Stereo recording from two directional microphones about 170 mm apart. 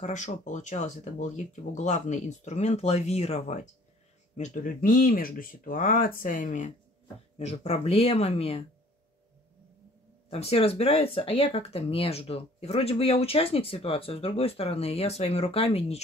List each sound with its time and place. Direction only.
0.0 s speech: 45° left (ahead or behind)
10.3 s speech: 35° left (ahead or behind)